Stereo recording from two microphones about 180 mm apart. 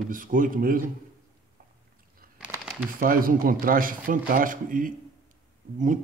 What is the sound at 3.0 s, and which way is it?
Speech, 50° right (ahead or behind).